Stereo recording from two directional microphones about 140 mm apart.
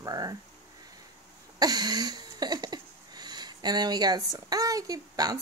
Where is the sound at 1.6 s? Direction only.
30° right (ahead or behind).